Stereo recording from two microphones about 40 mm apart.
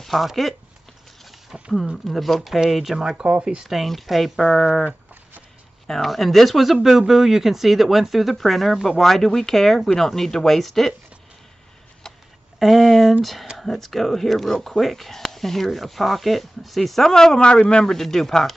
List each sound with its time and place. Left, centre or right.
0.0 s speech: centre
3.0 s speech: centre
3.6 s speech: centre
5.9 s speech: centre
12.5 s a sound: centre
13.2 s speech: centre
17.4 s speech: left
17.8 s speech: centre